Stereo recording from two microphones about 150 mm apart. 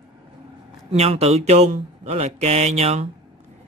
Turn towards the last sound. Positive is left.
turn(degrees=-45)  # may be behind; listen again after turning